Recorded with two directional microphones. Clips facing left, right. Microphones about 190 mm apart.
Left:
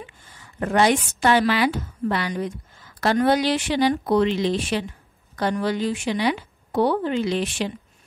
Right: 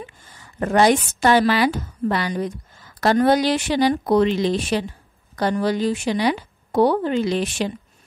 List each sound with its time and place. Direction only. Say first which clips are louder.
0.6 s speech: right 3 dB; 40° right (ahead or behind)